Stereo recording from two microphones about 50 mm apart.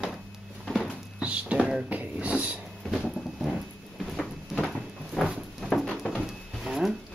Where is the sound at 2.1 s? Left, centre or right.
Right.